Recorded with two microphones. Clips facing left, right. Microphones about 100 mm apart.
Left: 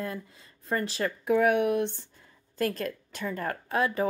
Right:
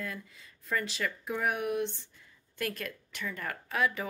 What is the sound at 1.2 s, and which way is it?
Speech, 60° left (ahead or behind).